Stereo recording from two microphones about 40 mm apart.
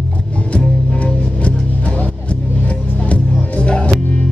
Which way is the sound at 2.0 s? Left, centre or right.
Left.